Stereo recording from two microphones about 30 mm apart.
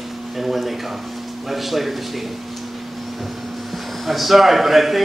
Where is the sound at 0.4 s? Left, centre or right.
Centre.